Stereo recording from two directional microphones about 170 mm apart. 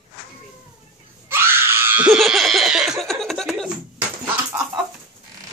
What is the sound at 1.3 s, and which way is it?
Screaming, 15° right (ahead or behind).